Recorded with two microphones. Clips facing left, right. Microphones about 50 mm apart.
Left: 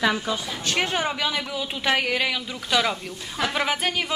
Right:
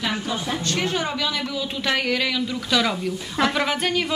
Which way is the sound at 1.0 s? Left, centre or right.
Centre.